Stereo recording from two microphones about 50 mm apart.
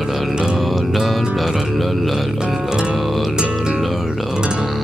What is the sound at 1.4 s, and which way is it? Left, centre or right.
Speech, centre.